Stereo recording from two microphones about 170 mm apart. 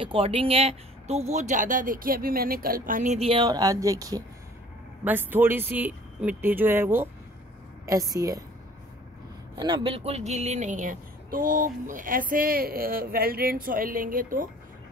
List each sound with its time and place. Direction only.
0.0 s speech: 30° right (ahead or behind)
3.4 s speech: 20° right (ahead or behind)
9.6 s a woman's voice: 30° right (ahead or behind); by 14.5 s 55° right (ahead or behind)